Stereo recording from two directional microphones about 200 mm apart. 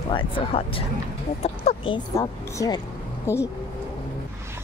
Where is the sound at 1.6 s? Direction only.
25° left (ahead or behind).